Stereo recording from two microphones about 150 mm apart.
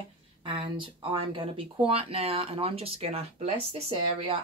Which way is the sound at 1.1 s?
35° right (ahead or behind).